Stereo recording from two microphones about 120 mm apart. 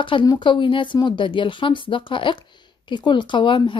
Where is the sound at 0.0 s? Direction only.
40° left (ahead or behind).